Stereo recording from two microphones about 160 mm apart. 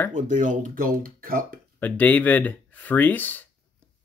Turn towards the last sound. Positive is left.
turn(degrees=10)  # may be behind; listen again after turning